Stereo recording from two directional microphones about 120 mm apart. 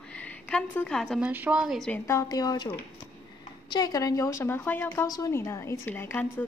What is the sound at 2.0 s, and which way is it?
Speech, 30° left (ahead or behind).